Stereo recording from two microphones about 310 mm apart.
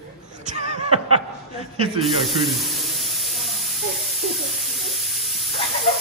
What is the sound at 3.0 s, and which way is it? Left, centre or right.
Steam, centre.